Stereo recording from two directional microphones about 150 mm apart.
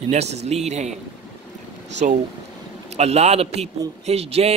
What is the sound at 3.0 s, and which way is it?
Speech, 45° right (ahead or behind).